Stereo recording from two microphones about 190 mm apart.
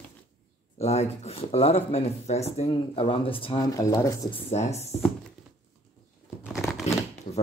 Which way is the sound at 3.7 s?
15° left (ahead or behind).